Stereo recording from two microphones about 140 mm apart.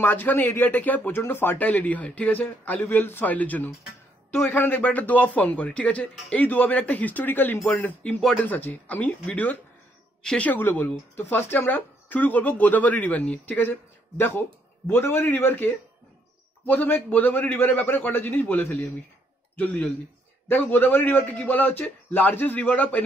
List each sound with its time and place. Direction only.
0.0 s a man's voice: 15° left (ahead or behind)